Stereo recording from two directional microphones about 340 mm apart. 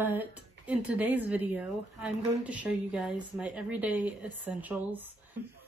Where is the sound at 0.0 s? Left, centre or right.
Centre.